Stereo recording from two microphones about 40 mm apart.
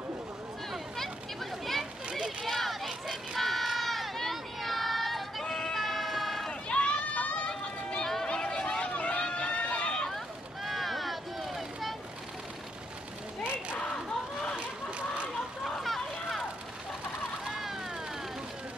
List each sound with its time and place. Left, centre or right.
0.9 s children playing: centre
2.2 s run: centre
3.3 s crowd: centre
6.7 s children playing: left
8.0 s music: centre
8.3 s run: left
8.9 s run: left
10.1 s vehicle: centre
15.6 s a sound: centre
17.5 s vehicle: centre